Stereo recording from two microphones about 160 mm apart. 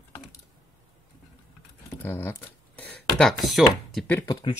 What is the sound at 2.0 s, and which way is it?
Speech, 10° left (ahead or behind).